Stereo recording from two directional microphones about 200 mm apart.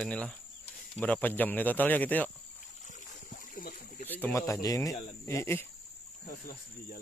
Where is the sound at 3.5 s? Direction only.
45° left (ahead or behind).